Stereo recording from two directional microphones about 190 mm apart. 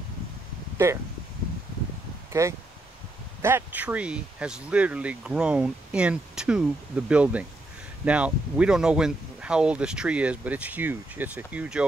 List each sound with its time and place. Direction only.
0.8 s speech: 15° right (ahead or behind)
2.4 s speech: 15° right (ahead or behind)